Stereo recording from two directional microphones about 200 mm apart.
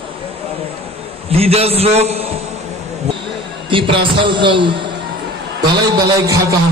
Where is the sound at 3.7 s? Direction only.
25° right (ahead or behind).